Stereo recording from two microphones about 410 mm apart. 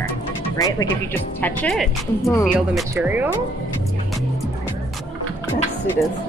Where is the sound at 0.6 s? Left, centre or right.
Centre.